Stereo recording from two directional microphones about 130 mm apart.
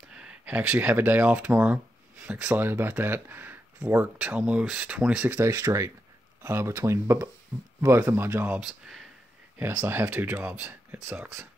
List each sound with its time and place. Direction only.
0.1 s speech: 5° right (ahead or behind)
5.4 s speech: 25° right (ahead or behind); by 9.0 s 5° right (ahead or behind)
9.8 s speech: 20° right (ahead or behind)